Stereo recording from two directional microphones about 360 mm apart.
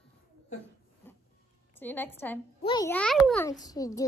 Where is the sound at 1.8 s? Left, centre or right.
Centre.